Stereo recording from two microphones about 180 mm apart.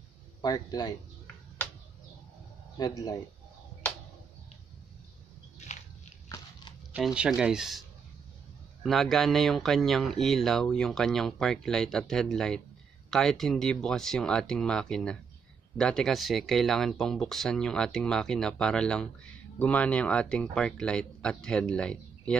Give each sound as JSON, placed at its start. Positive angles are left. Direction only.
{"t": 0.4, "sound": "a man's voice", "side_deg": 20}
{"t": 2.8, "sound": "a man's voice", "side_deg": 20}
{"t": 6.2, "sound": "a sound", "side_deg": 20}
{"t": 6.9, "sound": "speech", "side_deg": -5}
{"t": 8.8, "sound": "speech", "side_deg": 0}